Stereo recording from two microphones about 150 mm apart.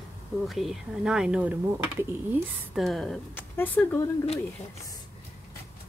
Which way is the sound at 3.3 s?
10° left (ahead or behind).